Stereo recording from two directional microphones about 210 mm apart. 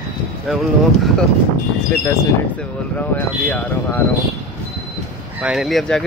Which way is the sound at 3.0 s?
10° left (ahead or behind).